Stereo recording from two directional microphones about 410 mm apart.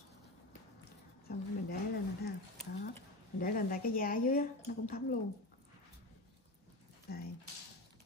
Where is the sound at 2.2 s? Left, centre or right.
Left.